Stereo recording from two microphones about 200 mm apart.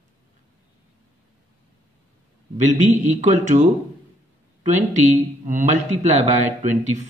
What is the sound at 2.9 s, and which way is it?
A man's voice, 35° right (ahead or behind).